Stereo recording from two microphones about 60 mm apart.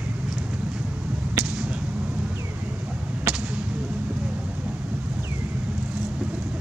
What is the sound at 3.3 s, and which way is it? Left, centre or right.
Whip, right.